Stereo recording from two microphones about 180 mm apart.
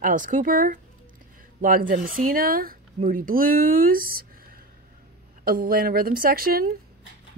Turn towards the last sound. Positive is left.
turn(degrees=-55)  # may be behind; listen again after turning